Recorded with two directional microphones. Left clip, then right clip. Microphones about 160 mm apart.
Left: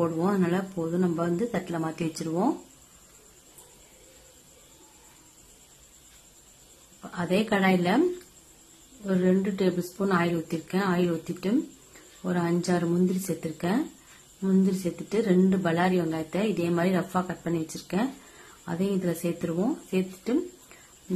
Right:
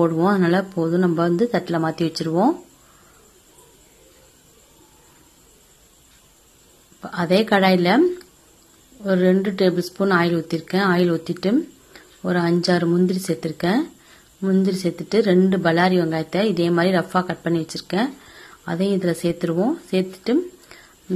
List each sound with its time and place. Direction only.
0.0 s a woman's voice: 30° right (ahead or behind)
7.0 s speech: 25° right (ahead or behind)
9.0 s a woman's voice: 25° right (ahead or behind)